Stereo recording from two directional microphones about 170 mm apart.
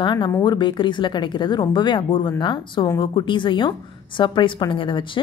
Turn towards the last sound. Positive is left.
turn(degrees=30)  # may be behind; listen again after turning